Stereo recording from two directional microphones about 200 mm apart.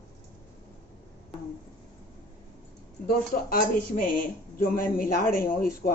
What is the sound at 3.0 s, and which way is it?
Speech, 45° left (ahead or behind).